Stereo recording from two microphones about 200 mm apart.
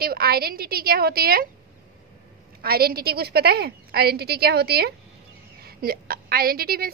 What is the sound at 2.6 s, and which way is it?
A woman's voice, 50° right (ahead or behind).